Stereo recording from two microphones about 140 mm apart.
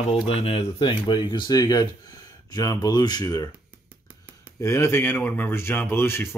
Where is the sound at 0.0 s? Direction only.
45° left (ahead or behind); by 3.4 s 30° left (ahead or behind).